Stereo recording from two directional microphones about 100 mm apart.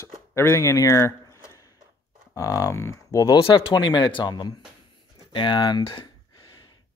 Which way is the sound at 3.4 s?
60° left (ahead or behind).